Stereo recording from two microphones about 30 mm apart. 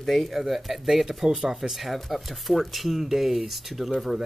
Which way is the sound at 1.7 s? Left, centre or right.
Centre.